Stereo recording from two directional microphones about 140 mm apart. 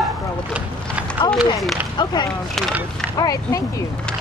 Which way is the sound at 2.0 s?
30° left (ahead or behind).